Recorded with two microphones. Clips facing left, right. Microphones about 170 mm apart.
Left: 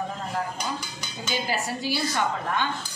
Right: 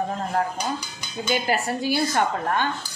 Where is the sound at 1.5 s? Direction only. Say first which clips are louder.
Right 5 dB; 55° right (ahead or behind).